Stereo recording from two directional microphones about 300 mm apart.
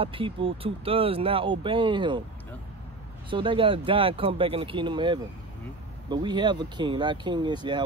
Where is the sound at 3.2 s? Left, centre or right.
Centre.